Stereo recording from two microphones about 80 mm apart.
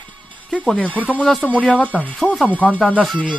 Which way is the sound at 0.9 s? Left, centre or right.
Centre.